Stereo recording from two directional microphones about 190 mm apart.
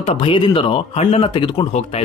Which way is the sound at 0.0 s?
25° left (ahead or behind).